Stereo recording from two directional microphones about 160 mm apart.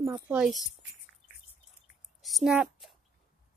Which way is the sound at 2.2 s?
Centre (ahead or behind).